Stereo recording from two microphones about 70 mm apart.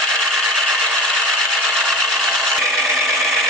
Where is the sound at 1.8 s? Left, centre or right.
Centre.